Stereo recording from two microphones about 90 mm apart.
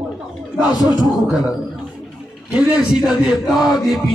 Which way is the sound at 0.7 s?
45° left (ahead or behind).